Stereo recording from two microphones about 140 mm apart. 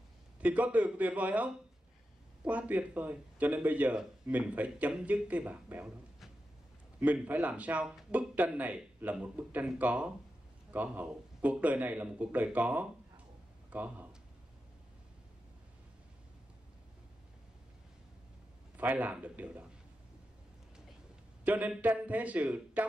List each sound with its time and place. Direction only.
0.4 s speech: 10° right (ahead or behind)
7.0 s speech: 10° right (ahead or behind)
18.8 s speech: 10° right (ahead or behind)
21.5 s speech: 10° right (ahead or behind)